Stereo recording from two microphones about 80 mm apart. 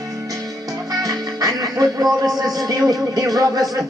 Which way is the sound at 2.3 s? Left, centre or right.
Right.